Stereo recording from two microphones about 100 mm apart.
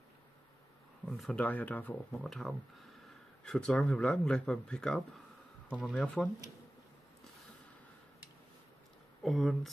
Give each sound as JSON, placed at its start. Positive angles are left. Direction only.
{"t": 1.0, "sound": "a sound", "side_deg": 0}
{"t": 1.3, "sound": "speech", "side_deg": 15}
{"t": 2.2, "sound": "speech", "side_deg": 0}
{"t": 9.2, "sound": "speech", "side_deg": 0}